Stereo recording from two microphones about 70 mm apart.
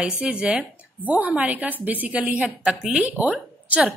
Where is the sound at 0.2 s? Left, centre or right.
Centre.